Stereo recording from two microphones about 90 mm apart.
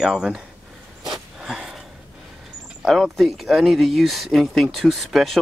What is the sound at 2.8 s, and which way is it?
Speech, centre (ahead or behind).